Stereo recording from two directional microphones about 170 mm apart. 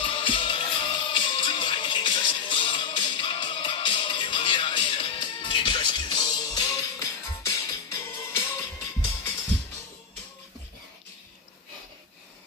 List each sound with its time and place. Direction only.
0.0 s music: 30° left (ahead or behind)